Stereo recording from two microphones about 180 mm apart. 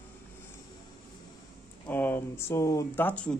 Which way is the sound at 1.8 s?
10° left (ahead or behind).